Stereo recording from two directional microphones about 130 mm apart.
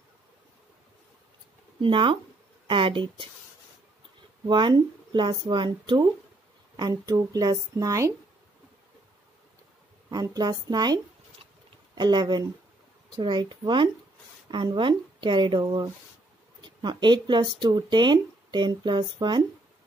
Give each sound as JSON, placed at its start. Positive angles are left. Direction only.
{"t": 1.8, "sound": "speech", "side_deg": -40}
{"t": 4.5, "sound": "a woman's voice", "side_deg": -35}
{"t": 10.0, "sound": "a woman's voice", "side_deg": -25}